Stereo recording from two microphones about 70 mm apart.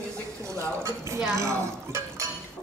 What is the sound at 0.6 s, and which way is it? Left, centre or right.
Speech, right.